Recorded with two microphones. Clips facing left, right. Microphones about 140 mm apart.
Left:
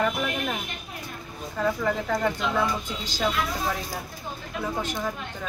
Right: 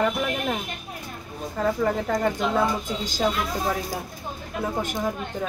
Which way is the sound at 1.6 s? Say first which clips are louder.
Right 2 dB; 20° right (ahead or behind).